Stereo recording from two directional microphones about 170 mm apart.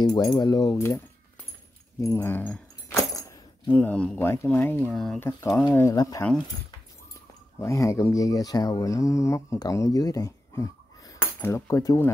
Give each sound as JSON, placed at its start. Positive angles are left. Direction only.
{"t": 0.0, "sound": "speech", "side_deg": 25}
{"t": 3.1, "sound": "a sound", "side_deg": 20}
{"t": 3.7, "sound": "speech", "side_deg": 10}
{"t": 5.8, "sound": "speech", "side_deg": 20}
{"t": 7.6, "sound": "speech", "side_deg": 15}